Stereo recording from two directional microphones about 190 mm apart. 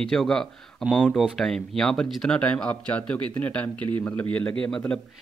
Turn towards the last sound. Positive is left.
turn(degrees=5)  # may be behind; listen again after turning